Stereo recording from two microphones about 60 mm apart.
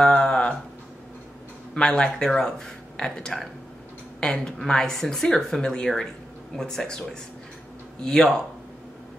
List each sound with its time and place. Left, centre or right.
0.0 s a sound: centre
1.8 s speech: centre
8.0 s speech: centre